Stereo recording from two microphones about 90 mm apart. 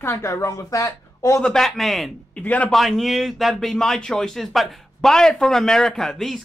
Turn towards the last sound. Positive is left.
turn(degrees=5)  # may be behind; listen again after turning